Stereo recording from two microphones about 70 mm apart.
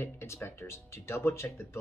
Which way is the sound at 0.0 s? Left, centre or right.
Left.